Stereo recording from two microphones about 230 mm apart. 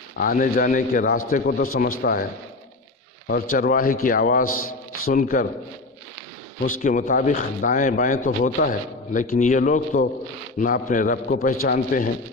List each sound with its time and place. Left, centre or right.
0.2 s a man's voice: left
3.3 s a man's voice: left
6.6 s a man's voice: left